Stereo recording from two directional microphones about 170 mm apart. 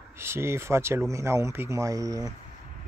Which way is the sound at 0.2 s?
15° right (ahead or behind).